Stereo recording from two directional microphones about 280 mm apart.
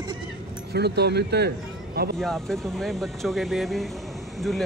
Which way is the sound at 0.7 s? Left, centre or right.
Right.